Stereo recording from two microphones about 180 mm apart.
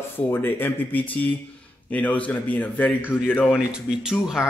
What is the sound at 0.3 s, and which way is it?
A man's voice, 10° left (ahead or behind).